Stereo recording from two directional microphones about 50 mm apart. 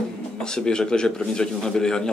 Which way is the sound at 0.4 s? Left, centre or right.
Centre.